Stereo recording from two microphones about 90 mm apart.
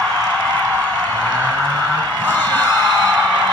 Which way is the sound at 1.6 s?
45° right (ahead or behind).